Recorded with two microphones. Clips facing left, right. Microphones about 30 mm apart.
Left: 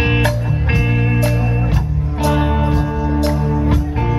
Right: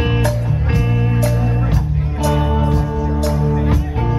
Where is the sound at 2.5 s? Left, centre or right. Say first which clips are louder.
Even; left.